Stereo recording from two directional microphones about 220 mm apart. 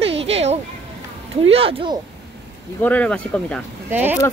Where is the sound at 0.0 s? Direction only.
25° right (ahead or behind).